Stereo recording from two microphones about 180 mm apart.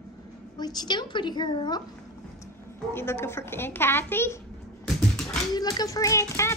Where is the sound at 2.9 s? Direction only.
15° left (ahead or behind).